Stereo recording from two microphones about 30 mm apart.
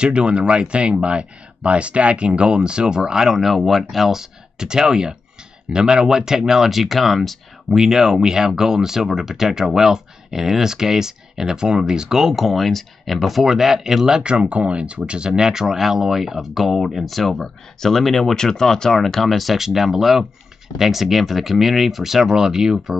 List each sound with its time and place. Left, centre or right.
0.0 s speech: right
3.3 s speech: centre
4.6 s speech: right
6.8 s speech: centre
7.7 s speech: centre
12.4 s speech: centre
13.5 s speech: centre
14.2 s speech: right
15.7 s speech: centre
18.3 s speech: centre
19.5 s speech: centre